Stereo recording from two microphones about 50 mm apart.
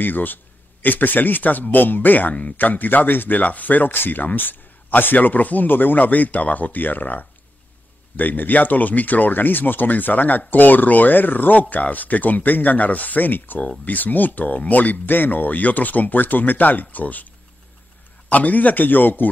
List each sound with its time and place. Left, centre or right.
0.0 s speech: left
18.3 s speech: left